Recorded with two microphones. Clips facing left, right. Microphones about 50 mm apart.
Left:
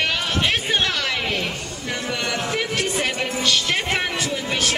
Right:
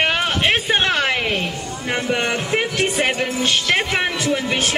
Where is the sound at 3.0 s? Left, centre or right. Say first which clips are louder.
Right 4 dB; right.